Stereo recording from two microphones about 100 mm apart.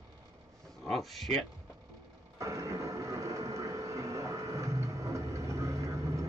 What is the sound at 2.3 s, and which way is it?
Vehicle, 30° right (ahead or behind).